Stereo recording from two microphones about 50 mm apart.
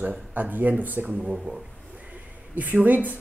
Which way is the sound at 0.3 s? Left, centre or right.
Right.